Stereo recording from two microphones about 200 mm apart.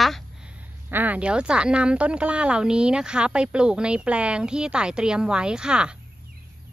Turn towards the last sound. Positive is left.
turn(degrees=-5)  # may be behind; listen again after turning